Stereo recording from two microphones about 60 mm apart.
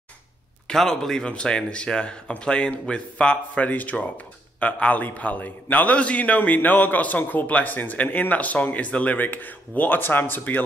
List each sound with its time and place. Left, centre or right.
0.7 s a man's voice: centre; by 10.6 s left